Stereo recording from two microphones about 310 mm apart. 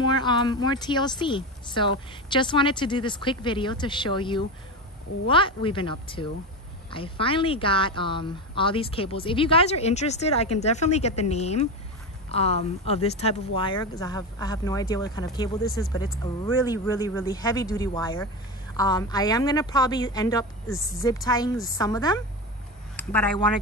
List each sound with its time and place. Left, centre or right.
0.0 s a woman's voice: centre
16.9 s a woman's voice: centre